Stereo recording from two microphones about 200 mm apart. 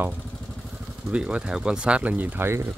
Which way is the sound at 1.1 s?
5° right (ahead or behind).